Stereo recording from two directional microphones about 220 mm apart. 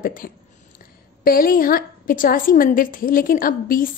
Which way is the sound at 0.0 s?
40° left (ahead or behind).